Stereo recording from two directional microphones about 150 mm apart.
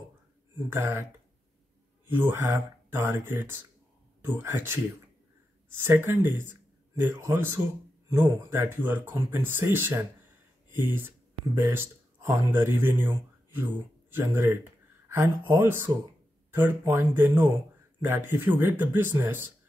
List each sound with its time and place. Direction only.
0.6 s speech: 20° right (ahead or behind)
2.0 s speech: 15° right (ahead or behind)
14.1 s speech: 15° right (ahead or behind)